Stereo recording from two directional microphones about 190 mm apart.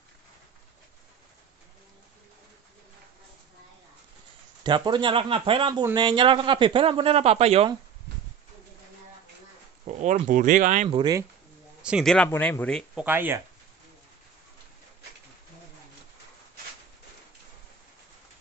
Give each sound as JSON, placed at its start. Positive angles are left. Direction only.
{"t": 4.6, "sound": "a man's voice", "side_deg": -25}
{"t": 9.8, "sound": "speech", "side_deg": -35}
{"t": 10.9, "sound": "a man's voice", "side_deg": -20}
{"t": 11.8, "sound": "speech", "side_deg": 0}
{"t": 12.9, "sound": "speech", "side_deg": -10}